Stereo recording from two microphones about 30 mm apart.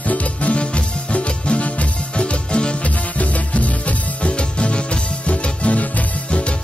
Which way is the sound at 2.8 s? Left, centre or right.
Left.